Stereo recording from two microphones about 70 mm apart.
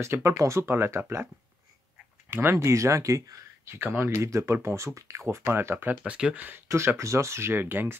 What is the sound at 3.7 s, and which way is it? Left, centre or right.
Speech, right.